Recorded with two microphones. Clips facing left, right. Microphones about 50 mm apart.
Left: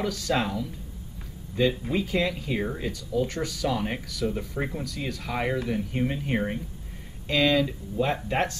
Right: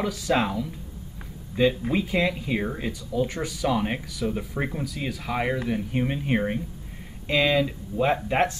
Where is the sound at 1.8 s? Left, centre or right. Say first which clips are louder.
Right 2 dB; centre.